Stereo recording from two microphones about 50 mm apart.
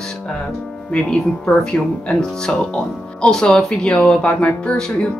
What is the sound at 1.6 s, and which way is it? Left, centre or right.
Speech, centre.